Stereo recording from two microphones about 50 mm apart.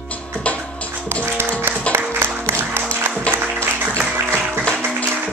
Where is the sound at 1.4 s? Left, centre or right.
Right.